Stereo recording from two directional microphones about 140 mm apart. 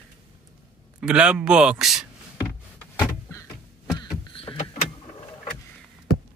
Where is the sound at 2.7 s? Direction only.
15° left (ahead or behind).